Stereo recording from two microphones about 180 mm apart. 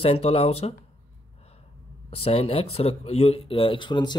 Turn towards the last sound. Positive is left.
turn(degrees=25)  # may be behind; listen again after turning